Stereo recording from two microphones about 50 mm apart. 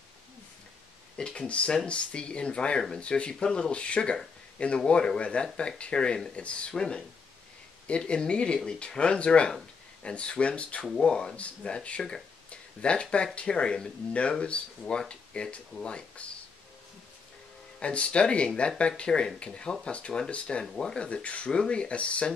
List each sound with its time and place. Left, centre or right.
1.1 s speech: centre
17.7 s speech: left